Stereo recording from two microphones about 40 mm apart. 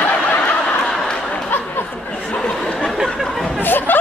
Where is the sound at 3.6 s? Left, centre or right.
Left.